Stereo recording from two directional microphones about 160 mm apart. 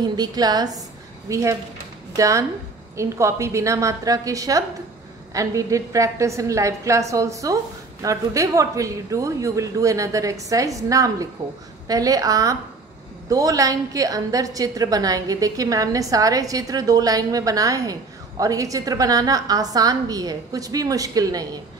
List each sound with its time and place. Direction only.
0.0 s a woman's voice: 25° right (ahead or behind)